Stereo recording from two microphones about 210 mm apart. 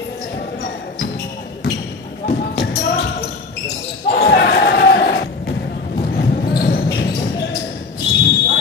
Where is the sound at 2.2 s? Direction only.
55° left (ahead or behind).